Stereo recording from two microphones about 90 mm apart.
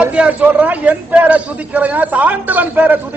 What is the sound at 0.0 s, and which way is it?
A man's voice, 15° right (ahead or behind).